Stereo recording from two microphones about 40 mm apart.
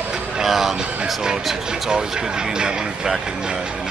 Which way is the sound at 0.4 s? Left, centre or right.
Centre.